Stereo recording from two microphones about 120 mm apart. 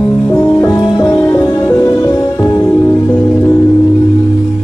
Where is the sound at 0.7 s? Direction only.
30° left (ahead or behind).